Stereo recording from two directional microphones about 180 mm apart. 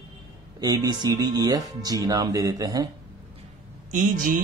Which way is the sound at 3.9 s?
45° right (ahead or behind).